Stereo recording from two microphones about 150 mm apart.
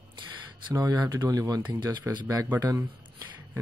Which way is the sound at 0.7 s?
25° right (ahead or behind).